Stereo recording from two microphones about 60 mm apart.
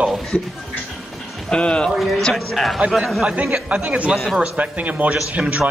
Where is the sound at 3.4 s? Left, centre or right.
Centre.